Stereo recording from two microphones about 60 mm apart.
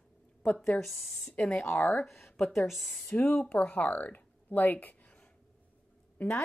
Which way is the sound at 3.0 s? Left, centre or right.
Left.